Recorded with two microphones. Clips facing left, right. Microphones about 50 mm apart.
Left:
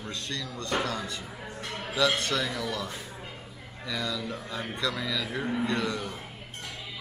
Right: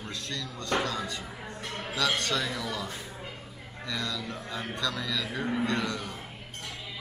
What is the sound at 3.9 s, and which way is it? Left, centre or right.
Speech, centre.